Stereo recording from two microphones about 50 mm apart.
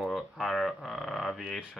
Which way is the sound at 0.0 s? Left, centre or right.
Centre.